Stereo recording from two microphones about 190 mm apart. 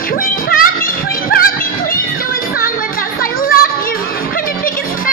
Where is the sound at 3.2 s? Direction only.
50° left (ahead or behind).